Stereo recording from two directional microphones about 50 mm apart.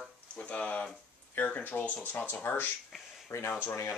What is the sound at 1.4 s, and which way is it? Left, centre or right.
Speech, left.